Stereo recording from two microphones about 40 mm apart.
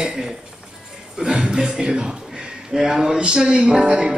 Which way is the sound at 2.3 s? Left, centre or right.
Right.